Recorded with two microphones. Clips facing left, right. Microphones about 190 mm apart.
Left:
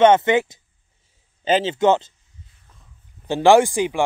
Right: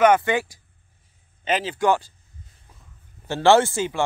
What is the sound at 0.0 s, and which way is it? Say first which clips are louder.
Speech: left 4 dB; 25° left (ahead or behind).